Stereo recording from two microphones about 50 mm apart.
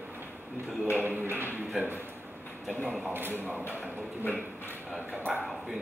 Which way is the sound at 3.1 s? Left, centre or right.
Right.